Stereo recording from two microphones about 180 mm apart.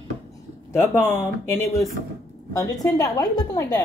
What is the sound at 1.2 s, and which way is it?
Speech, 15° left (ahead or behind).